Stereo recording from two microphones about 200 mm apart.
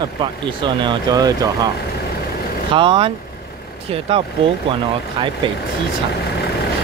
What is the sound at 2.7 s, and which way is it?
Speech, 25° right (ahead or behind).